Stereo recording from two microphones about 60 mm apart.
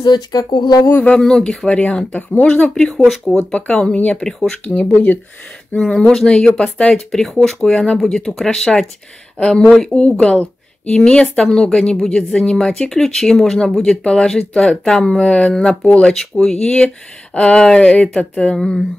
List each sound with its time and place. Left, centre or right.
0.3 s speech: left
1.1 s speech: centre
1.7 s speech: centre
4.9 s speech: left
5.8 s speech: centre
7.1 s speech: centre
18.6 s speech: centre